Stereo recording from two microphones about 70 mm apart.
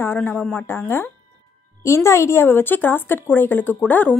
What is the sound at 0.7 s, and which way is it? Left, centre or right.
Speech, left.